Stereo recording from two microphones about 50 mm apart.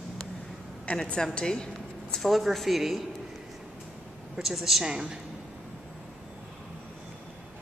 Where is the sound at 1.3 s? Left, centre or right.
Centre.